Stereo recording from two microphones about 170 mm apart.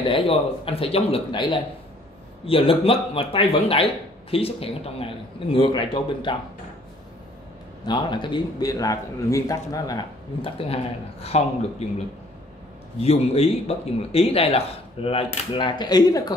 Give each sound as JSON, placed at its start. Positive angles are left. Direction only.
{"t": 0.1, "sound": "speech", "side_deg": 35}
{"t": 7.8, "sound": "a man's voice", "side_deg": 25}
{"t": 13.0, "sound": "a man's voice", "side_deg": 35}